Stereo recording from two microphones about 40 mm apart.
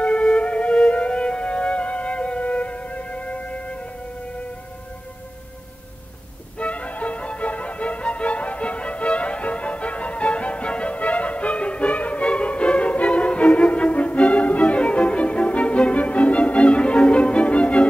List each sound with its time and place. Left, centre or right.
0.0 s music: left
6.6 s music: left